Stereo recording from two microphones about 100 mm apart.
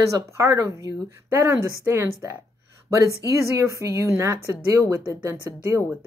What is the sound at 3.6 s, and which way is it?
Speech, 30° right (ahead or behind).